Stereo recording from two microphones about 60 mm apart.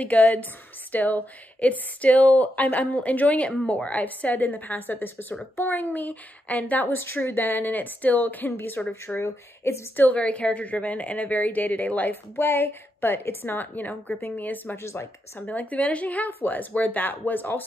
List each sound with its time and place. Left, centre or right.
0.0 s a woman's voice: left
9.9 s a woman's voice: left
14.8 s speech: left
15.3 s a woman's voice: left